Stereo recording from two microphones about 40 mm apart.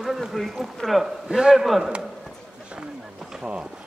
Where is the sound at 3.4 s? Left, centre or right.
Right.